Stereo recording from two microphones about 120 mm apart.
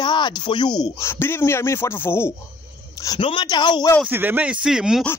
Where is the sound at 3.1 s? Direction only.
45° left (ahead or behind).